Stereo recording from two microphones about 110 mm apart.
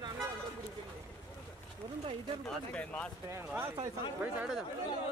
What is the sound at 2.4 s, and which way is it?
Speech, 10° left (ahead or behind).